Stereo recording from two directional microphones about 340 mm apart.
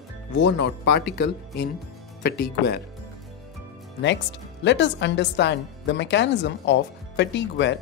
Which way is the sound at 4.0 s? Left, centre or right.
Left.